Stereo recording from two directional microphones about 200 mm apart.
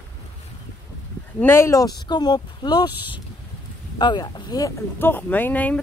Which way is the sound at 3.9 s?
20° left (ahead or behind).